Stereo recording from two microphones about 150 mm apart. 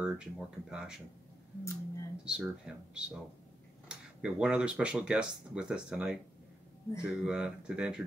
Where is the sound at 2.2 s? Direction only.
5° right (ahead or behind).